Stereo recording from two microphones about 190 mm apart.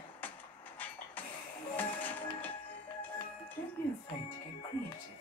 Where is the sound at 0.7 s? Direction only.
10° left (ahead or behind).